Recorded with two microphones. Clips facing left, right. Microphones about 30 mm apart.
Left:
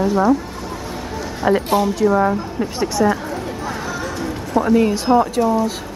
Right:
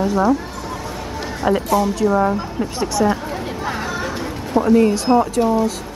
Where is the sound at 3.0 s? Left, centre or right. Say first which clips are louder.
Left 1 dB; centre.